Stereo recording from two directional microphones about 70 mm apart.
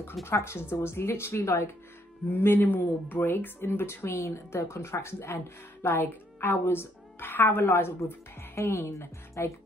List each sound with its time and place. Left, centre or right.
0.2 s a woman's voice: left